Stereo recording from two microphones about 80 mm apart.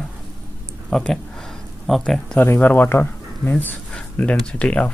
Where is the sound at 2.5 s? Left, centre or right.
Left.